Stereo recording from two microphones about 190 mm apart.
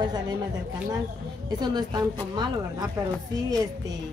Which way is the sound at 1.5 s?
20° right (ahead or behind).